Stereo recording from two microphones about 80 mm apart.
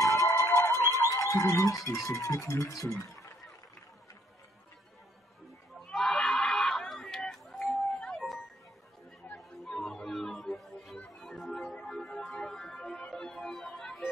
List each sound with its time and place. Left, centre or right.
0.0 s music: left
2.0 s speech: left
5.8 s screaming: centre
9.3 s chatter: centre
9.7 s music: centre